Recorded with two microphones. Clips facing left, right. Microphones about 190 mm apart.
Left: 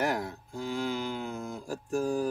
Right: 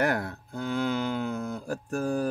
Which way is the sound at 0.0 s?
60° right (ahead or behind).